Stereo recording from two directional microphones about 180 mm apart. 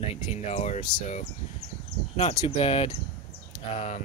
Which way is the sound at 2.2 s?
35° left (ahead or behind).